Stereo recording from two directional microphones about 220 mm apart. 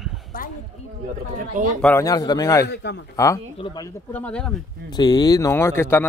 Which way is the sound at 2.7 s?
50° left (ahead or behind).